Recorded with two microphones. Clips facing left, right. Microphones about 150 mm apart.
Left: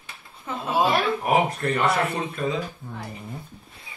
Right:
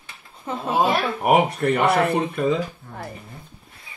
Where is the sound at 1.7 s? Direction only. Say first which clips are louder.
Right 6 dB; 60° right (ahead or behind).